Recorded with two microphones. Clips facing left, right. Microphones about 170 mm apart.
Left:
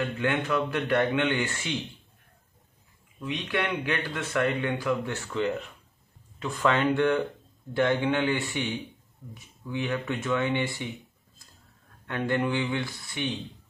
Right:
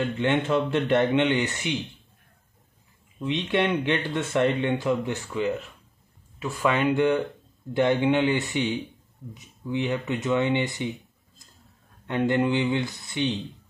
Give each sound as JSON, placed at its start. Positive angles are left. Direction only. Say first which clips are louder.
{"t": 0.0, "sound": "speech", "louder": "right 4 dB", "side_deg": -25}
{"t": 3.2, "sound": "a man's voice", "louder": "right 5 dB", "side_deg": -25}
{"t": 12.1, "sound": "speech", "louder": "right 4 dB", "side_deg": -20}